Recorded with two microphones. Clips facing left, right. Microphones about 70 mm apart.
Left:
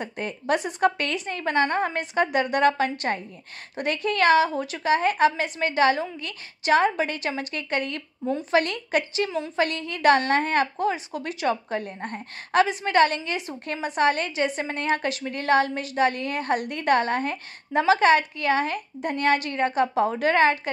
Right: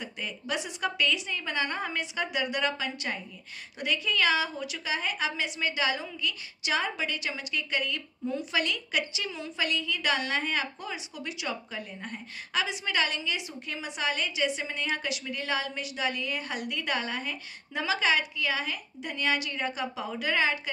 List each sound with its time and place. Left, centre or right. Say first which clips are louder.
0.0 s a woman's voice: left 7 dB; left